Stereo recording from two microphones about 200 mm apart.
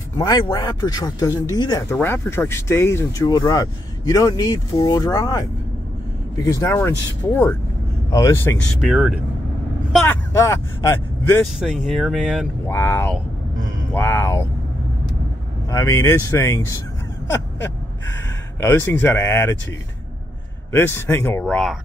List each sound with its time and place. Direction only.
0.2 s speech: 20° left (ahead or behind)
8.8 s speech: 5° right (ahead or behind)
9.9 s speech: 10° left (ahead or behind)
11.6 s speech: centre (ahead or behind)
12.6 s speech: 10° left (ahead or behind)
15.7 s speech: 15° left (ahead or behind)
17.3 s gasp: 10° left (ahead or behind)
18.6 s speech: 10° left (ahead or behind)
20.7 s speech: 10° left (ahead or behind)